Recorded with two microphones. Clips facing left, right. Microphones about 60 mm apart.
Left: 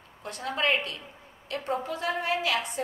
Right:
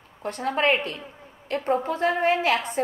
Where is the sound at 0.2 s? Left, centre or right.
Right.